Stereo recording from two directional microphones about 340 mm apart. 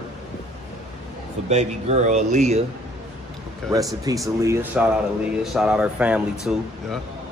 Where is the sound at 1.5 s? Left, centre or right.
Centre.